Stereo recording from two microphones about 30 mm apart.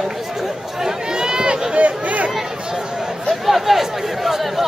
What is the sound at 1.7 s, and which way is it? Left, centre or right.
Speech, right.